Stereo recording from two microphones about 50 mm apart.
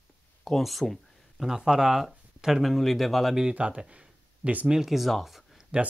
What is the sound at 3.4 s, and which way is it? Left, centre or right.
Speech, right.